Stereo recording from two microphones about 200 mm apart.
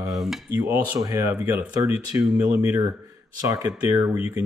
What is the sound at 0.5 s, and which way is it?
Speech, 15° right (ahead or behind).